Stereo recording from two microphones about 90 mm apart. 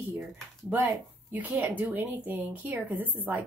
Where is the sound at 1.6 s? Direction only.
20° right (ahead or behind).